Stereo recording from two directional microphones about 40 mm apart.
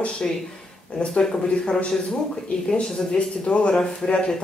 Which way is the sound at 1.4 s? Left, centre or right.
Left.